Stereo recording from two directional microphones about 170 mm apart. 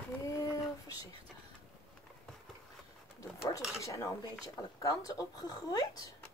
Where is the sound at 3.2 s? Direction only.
20° left (ahead or behind).